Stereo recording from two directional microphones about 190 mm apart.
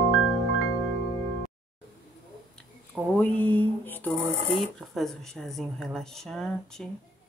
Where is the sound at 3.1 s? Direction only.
10° left (ahead or behind).